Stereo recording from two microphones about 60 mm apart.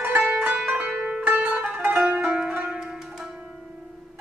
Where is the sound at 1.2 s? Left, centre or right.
Right.